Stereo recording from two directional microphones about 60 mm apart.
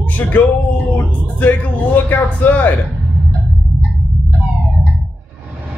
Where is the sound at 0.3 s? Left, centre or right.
Left.